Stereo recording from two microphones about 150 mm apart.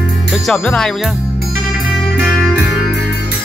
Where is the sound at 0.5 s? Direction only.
5° left (ahead or behind).